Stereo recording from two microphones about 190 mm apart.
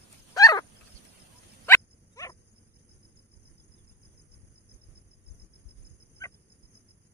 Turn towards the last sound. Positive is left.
turn(degrees=15)  # may be behind; listen again after turning